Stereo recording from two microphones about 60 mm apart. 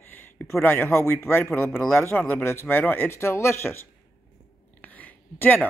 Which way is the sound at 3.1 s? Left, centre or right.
Left.